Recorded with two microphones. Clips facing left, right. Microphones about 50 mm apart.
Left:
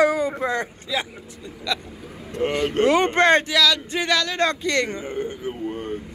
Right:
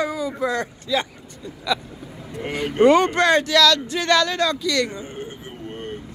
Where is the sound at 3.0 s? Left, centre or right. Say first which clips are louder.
Left 1 dB; left.